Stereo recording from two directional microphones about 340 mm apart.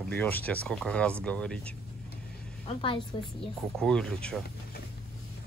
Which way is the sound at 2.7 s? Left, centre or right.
Centre.